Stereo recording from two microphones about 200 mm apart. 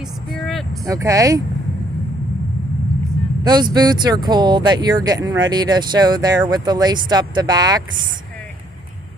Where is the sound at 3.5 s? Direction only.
20° right (ahead or behind).